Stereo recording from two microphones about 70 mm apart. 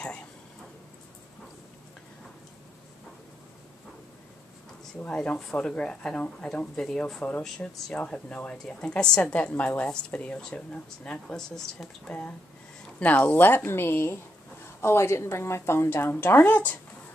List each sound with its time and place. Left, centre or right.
5.0 s a woman's voice: centre
12.1 s a woman's voice: left